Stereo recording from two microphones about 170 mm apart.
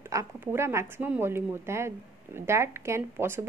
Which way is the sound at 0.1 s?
15° right (ahead or behind).